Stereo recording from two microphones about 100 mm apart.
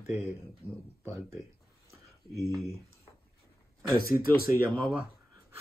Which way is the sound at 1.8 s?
30° left (ahead or behind).